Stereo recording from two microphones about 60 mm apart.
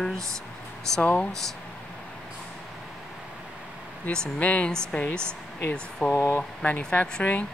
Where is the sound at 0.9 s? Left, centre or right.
Left.